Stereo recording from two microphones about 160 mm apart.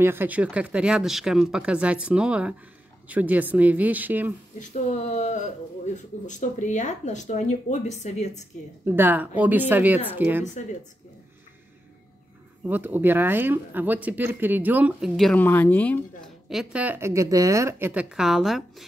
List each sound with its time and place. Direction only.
0.0 s speech: 15° right (ahead or behind)
4.6 s speech: 50° left (ahead or behind)
8.8 s speech: 15° right (ahead or behind)
12.6 s speech: 10° right (ahead or behind)
15.4 s speech: 10° left (ahead or behind)
16.4 s speech: 5° right (ahead or behind)